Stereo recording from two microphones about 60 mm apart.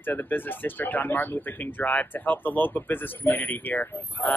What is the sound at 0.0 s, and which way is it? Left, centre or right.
Speech, left.